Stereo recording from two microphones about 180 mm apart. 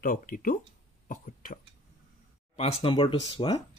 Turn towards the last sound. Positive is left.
turn(degrees=25)  # may be behind; listen again after turning